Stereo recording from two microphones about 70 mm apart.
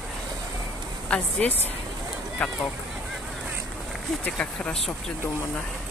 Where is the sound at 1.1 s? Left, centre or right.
Left.